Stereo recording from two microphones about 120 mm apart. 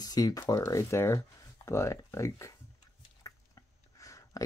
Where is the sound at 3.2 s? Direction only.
25° left (ahead or behind).